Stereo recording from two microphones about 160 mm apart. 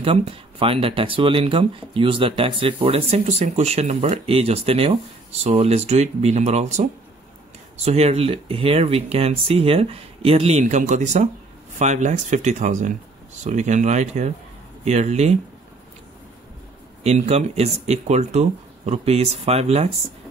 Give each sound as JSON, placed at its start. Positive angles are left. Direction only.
{"t": 0.0, "sound": "speech", "side_deg": -35}
{"t": 17.0, "sound": "speech", "side_deg": -45}